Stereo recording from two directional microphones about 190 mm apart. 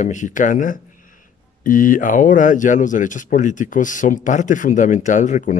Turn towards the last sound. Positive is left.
turn(degrees=40)  # may be behind; listen again after turning